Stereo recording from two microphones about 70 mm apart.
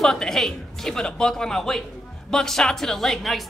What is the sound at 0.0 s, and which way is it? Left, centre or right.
A woman's voice, centre.